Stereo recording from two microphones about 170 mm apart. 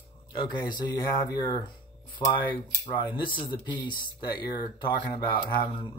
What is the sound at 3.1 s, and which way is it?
Speech, 30° left (ahead or behind).